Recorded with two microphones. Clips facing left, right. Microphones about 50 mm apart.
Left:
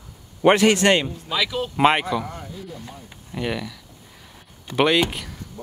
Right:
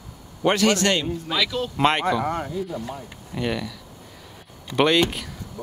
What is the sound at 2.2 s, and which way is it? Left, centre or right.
Speech, right.